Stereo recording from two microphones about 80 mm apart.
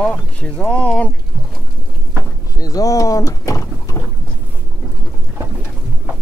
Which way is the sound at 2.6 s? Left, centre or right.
Left.